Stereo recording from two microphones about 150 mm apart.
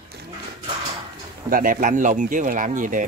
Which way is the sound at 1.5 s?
65° right (ahead or behind).